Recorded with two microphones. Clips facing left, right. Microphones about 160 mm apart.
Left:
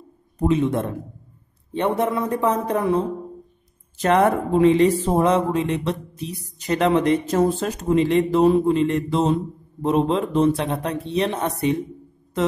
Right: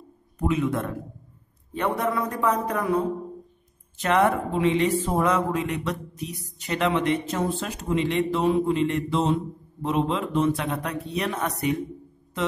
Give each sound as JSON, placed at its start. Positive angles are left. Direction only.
{"t": 0.4, "sound": "speech", "side_deg": 30}
{"t": 2.0, "sound": "speech", "side_deg": 25}
{"t": 4.0, "sound": "speech", "side_deg": 40}